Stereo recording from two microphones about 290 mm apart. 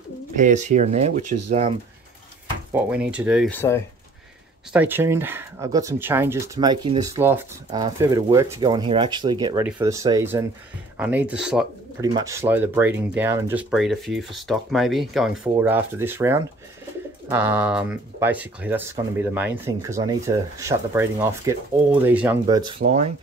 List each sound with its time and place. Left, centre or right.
0.4 s speech: right
2.7 s speech: centre
4.7 s speech: centre
22.8 s speech: right